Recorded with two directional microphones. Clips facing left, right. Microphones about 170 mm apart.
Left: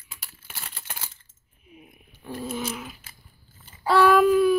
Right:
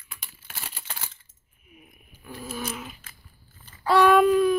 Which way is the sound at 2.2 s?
25° left (ahead or behind).